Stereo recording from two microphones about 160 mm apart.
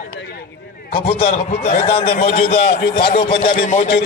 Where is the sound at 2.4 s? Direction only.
70° left (ahead or behind).